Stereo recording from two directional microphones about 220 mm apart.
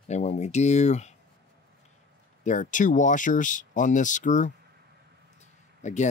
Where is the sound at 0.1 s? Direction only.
30° left (ahead or behind).